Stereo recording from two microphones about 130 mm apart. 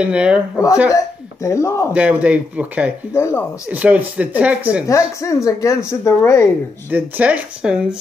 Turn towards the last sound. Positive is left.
turn(degrees=-5)  # may be behind; listen again after turning